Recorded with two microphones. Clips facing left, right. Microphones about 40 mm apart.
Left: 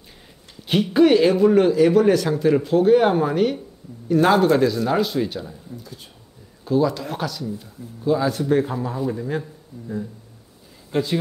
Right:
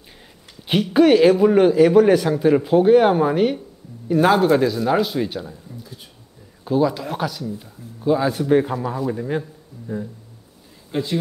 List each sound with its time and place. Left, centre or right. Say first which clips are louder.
0.9 s a man's voice: right 2 dB; centre